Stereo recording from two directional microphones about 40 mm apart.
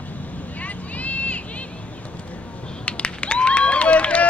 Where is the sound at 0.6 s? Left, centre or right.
Left.